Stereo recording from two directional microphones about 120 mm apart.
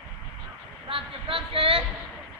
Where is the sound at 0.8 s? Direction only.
50° right (ahead or behind).